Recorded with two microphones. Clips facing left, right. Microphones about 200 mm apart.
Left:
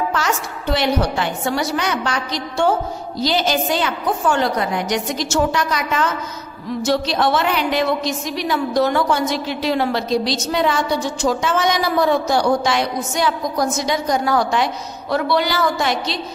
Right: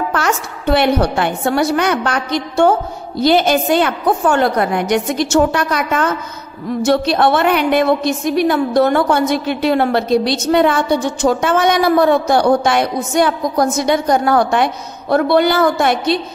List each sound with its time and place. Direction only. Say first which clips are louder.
0.1 s a woman's voice: right 3 dB; 55° right (ahead or behind)